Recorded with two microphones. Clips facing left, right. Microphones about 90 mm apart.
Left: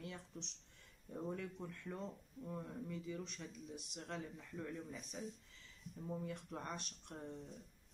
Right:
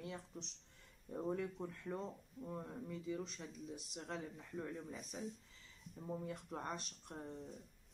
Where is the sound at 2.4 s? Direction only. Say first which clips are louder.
Even; 15° right (ahead or behind).